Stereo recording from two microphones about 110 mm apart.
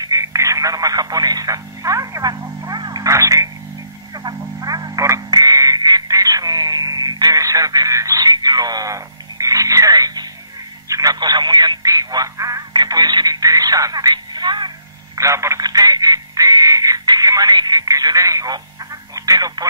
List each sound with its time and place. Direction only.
0.0 s radio: 30° right (ahead or behind)
2.8 s a sound: 35° right (ahead or behind)
4.1 s frog: 35° right (ahead or behind)
5.3 s a sound: 35° right (ahead or behind)
10.9 s telephone: 35° right (ahead or behind)
15.1 s telephone: 25° right (ahead or behind)